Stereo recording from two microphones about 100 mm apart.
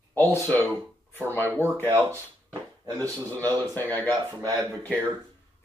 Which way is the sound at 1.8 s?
25° right (ahead or behind).